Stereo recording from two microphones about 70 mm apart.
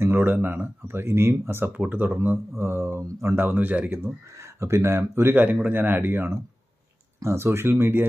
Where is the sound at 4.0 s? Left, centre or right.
Right.